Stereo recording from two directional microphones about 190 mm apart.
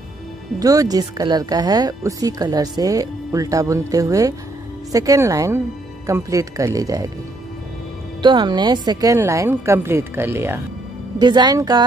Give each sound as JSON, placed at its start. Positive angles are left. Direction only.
{"t": 0.6, "sound": "a woman's voice", "side_deg": -20}
{"t": 8.2, "sound": "a woman's voice", "side_deg": -25}
{"t": 11.1, "sound": "speech", "side_deg": -20}